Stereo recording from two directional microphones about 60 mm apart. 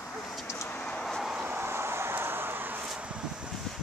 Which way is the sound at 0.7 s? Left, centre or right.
Left.